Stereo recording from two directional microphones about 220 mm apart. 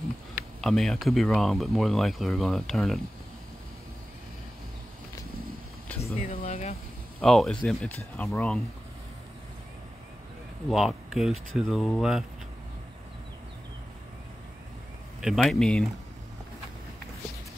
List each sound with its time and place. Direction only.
0.6 s speech: centre (ahead or behind)
6.1 s a sound: 30° left (ahead or behind)
7.2 s speech: centre (ahead or behind)
10.7 s speech: centre (ahead or behind)
15.1 s speech: centre (ahead or behind)